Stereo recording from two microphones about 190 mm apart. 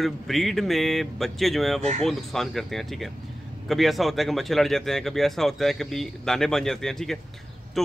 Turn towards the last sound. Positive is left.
turn(degrees=0)  # may be behind; listen again after turning